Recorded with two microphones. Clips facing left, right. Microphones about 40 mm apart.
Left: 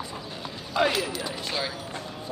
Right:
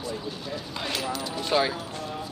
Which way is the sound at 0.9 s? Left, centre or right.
Centre.